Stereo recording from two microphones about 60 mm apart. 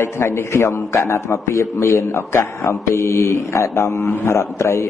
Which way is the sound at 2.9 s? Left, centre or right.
Left.